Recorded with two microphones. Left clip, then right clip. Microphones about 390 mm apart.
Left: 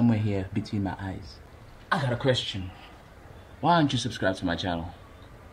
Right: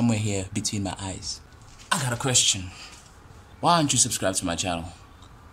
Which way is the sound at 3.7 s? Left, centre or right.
Centre.